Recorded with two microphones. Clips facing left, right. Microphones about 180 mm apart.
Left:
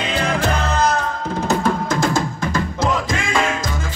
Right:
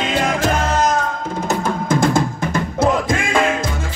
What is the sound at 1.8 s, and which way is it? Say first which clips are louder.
Drum: right 3 dB; 55° right (ahead or behind).